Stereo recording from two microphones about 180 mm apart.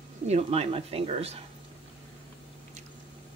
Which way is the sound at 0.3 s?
35° right (ahead or behind).